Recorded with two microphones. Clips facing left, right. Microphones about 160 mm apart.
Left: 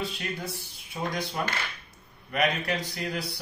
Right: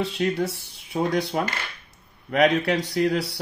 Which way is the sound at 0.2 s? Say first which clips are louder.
Right 11 dB; 75° right (ahead or behind).